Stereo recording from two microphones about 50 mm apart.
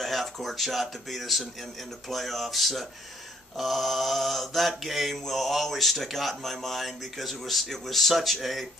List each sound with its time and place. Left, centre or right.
0.0 s speech: centre
1.6 s mantra: centre